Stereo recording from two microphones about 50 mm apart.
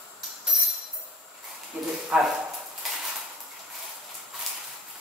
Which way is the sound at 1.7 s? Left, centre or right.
Right.